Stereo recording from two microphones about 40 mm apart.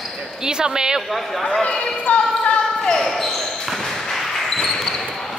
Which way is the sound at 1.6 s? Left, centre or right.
Left.